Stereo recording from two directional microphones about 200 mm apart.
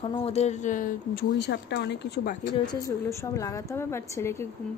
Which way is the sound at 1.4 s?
60° left (ahead or behind).